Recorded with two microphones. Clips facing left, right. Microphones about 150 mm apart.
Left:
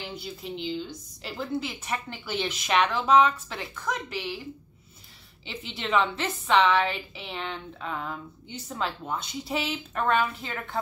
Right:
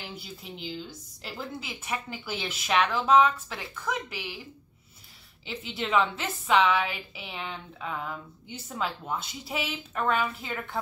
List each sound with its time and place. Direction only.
0.1 s a woman's voice: 5° right (ahead or behind)
5.4 s a woman's voice: 5° right (ahead or behind)